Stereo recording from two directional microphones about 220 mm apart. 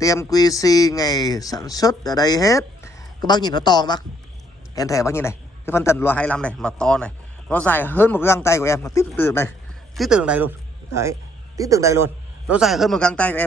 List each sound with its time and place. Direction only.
0.0 s a man's voice: 15° left (ahead or behind)
9.9 s a man's voice: 5° right (ahead or behind)